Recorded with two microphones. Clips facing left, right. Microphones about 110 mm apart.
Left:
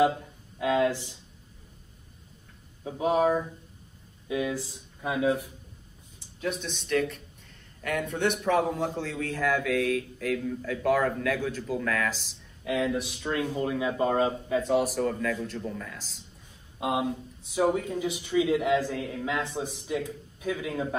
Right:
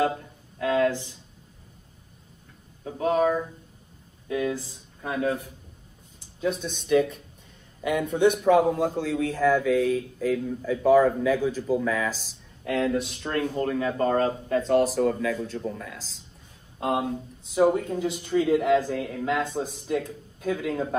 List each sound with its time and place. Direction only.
0.6 s a sound: 15° left (ahead or behind)
2.8 s speech: 15° left (ahead or behind)
6.4 s a man's voice: 5° right (ahead or behind)
12.6 s speech: 10° left (ahead or behind)